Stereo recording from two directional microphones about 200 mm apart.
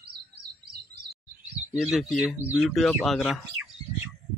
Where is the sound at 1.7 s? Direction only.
Centre (ahead or behind).